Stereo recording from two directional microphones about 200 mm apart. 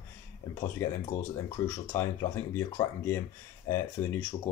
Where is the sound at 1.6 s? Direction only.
10° left (ahead or behind).